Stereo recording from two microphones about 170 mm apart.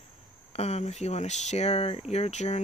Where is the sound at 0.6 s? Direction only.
40° left (ahead or behind).